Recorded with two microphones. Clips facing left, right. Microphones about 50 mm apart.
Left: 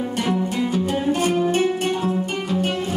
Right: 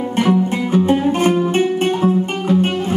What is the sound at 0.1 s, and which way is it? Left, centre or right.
Music, right.